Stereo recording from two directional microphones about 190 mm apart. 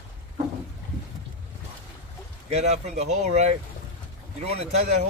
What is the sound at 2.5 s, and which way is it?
Speech, 35° right (ahead or behind).